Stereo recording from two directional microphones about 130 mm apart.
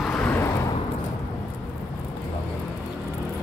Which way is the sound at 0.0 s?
10° left (ahead or behind).